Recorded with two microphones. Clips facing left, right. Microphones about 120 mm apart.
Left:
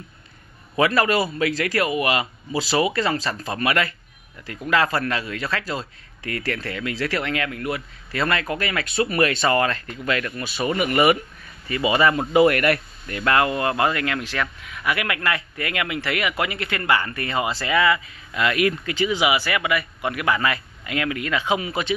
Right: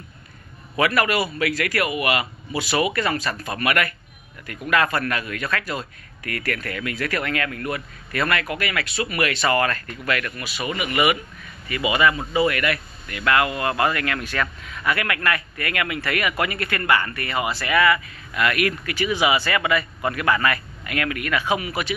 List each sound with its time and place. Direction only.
1.4 s speech: 30° left (ahead or behind)
12.2 s speech: 55° left (ahead or behind); by 14.2 s 20° left (ahead or behind)
14.3 s speech: 10° left (ahead or behind); by 21.9 s 25° left (ahead or behind)